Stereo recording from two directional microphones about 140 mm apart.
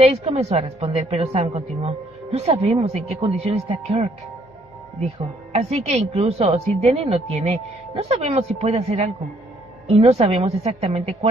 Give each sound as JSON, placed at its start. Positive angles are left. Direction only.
{"t": 0.0, "sound": "a woman's voice", "side_deg": -45}
{"t": 5.5, "sound": "a woman's voice", "side_deg": -50}